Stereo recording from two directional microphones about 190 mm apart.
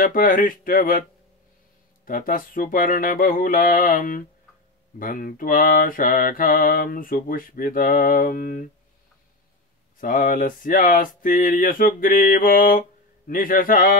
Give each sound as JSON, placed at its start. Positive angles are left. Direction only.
{"t": 0.0, "sound": "mantra", "side_deg": 45}
{"t": 2.0, "sound": "mantra", "side_deg": 50}
{"t": 9.9, "sound": "mantra", "side_deg": 45}